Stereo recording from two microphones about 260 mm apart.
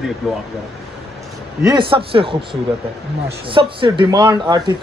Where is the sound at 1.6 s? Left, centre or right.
Centre.